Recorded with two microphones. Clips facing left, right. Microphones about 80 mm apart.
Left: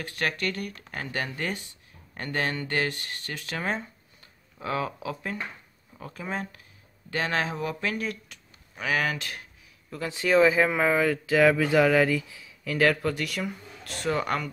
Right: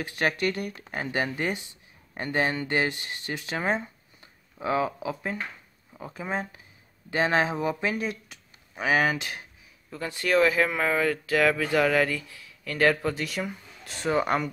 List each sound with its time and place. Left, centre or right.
0.4 s speech: centre
10.2 s speech: centre
12.7 s speech: centre